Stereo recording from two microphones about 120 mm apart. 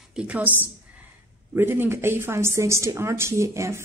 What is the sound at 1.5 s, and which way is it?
A woman's voice, 20° right (ahead or behind).